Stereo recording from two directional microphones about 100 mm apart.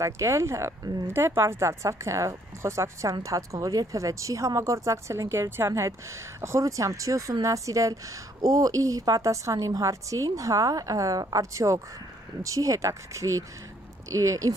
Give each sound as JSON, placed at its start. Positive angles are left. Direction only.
{"t": 0.0, "sound": "speech", "side_deg": -30}